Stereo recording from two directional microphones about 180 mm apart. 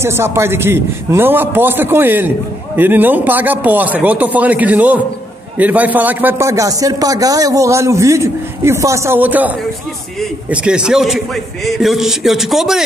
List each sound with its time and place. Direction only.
0.0 s a man's voice: 15° right (ahead or behind)